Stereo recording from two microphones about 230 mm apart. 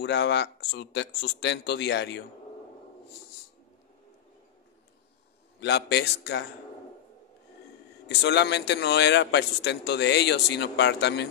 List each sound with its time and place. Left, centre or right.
0.0 s a man's voice: left
5.6 s a man's voice: left
8.1 s a man's voice: left